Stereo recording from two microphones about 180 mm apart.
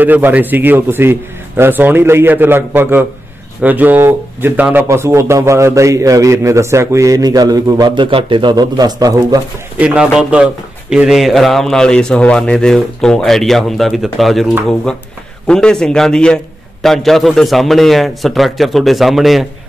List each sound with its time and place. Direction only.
0.0 s speech: 10° right (ahead or behind)
9.8 s a man's voice: 5° right (ahead or behind)